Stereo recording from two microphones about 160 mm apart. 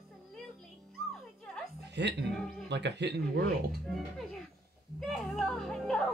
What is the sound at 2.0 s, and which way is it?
Speech, 90° right.